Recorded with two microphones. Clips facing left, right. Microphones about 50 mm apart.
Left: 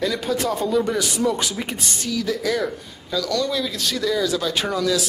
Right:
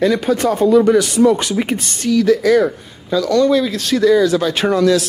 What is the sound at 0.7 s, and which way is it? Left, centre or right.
Speech, right.